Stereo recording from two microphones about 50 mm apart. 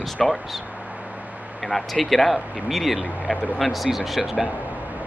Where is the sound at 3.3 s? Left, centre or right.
Left.